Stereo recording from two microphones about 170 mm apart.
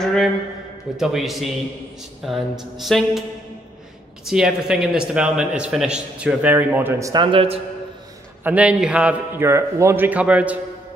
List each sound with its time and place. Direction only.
0.0 s a sound: 5° left (ahead or behind)
0.9 s a man's voice: centre (ahead or behind)
4.3 s a man's voice: 5° right (ahead or behind); by 7.2 s 20° right (ahead or behind)
7.2 s a man's voice: 35° right (ahead or behind)
8.5 s a man's voice: 5° right (ahead or behind)